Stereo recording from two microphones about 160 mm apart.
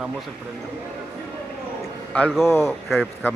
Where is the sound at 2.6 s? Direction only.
Centre (ahead or behind).